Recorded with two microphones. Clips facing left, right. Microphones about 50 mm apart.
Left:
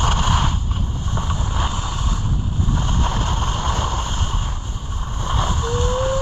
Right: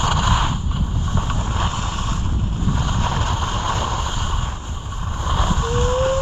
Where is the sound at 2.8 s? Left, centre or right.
Centre.